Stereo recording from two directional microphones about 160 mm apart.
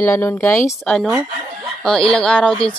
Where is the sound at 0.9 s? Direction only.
Centre (ahead or behind).